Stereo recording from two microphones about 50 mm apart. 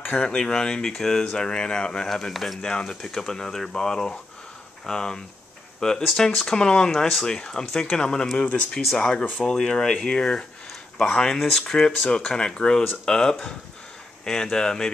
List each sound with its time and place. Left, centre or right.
0.2 s speech: centre
2.0 s speech: centre
2.6 s speech: centre
7.0 s speech: centre
7.2 s speech: centre